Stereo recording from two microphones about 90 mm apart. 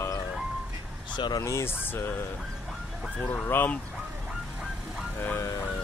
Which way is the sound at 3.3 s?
25° left (ahead or behind).